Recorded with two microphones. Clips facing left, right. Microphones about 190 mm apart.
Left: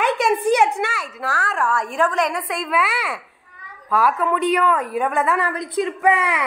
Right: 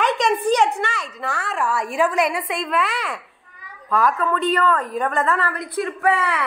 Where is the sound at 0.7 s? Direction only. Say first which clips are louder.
Left 1 dB; 5° left (ahead or behind).